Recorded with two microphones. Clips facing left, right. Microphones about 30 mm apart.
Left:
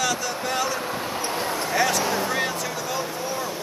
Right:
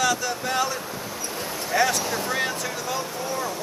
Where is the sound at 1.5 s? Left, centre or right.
Left.